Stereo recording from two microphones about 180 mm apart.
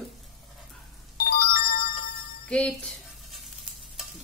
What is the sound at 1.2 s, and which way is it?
Ringtone, 55° left (ahead or behind).